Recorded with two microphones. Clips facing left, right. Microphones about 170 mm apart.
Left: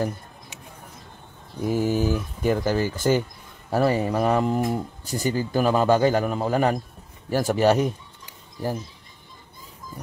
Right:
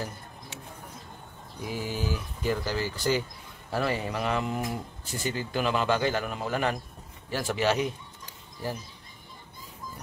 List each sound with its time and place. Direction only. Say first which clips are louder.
1.6 s speech: left 10 dB; 50° left (ahead or behind)
3.7 s speech: left 8 dB; 40° left (ahead or behind)